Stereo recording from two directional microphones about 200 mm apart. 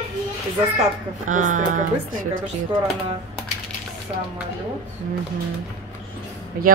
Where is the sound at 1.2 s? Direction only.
40° right (ahead or behind).